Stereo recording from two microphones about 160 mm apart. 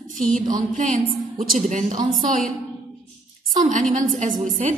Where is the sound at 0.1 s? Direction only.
55° right (ahead or behind).